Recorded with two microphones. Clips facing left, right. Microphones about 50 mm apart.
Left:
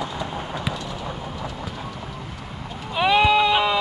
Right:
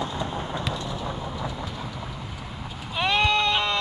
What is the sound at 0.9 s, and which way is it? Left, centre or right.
Train, left.